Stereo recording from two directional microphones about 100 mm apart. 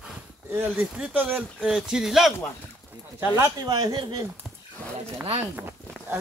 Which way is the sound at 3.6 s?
40° right (ahead or behind).